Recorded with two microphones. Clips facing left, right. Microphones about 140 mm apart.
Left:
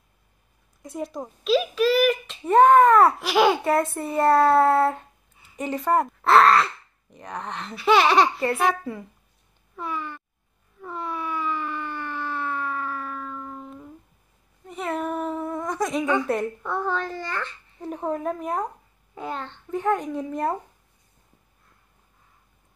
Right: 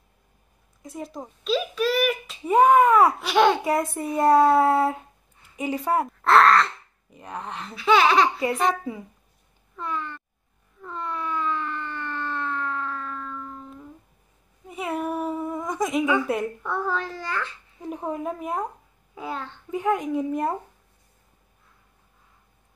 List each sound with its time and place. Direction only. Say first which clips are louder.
0.8 s a child's voice: left 3 dB; centre (ahead or behind)
3.2 s a child's voice: even; 5° left (ahead or behind)
3.6 s a child's voice: left 2 dB; 10° right (ahead or behind)
7.8 s laughter: left 1 dB; 10° left (ahead or behind)
9.8 s a sound: even; 5° left (ahead or behind)
14.7 s a sound: even; 10° right (ahead or behind)
16.3 s a child's voice: left 1 dB; 5° right (ahead or behind)